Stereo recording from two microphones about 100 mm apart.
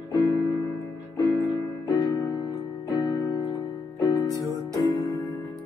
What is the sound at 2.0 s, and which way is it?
Music, 40° left (ahead or behind).